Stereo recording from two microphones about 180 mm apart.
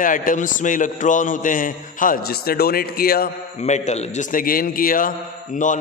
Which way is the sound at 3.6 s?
40° left (ahead or behind).